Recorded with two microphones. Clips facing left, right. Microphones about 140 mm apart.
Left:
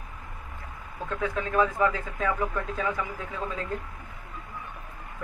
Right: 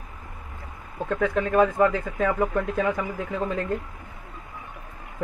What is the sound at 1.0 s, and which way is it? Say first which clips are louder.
Speech: right 6 dB; 55° right (ahead or behind).